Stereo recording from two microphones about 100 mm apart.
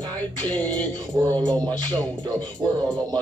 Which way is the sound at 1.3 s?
35° right (ahead or behind).